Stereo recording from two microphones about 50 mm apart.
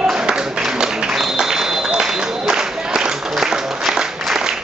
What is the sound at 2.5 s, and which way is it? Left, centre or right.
Applause, centre.